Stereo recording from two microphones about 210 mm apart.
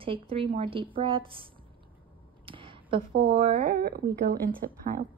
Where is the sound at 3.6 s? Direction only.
45° right (ahead or behind).